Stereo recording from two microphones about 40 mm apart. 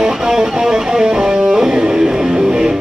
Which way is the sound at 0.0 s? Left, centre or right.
Centre.